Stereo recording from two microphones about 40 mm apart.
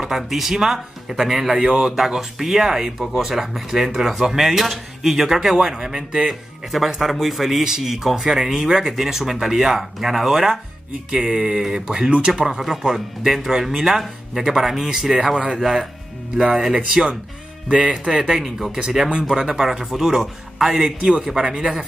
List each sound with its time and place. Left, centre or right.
0.0 s speech: centre
2.0 s speech: centre
16.3 s speech: right; by 20.7 s centre
20.7 s speech: right